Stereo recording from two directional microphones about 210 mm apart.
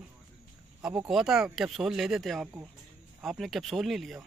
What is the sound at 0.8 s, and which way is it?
Speech, 5° right (ahead or behind).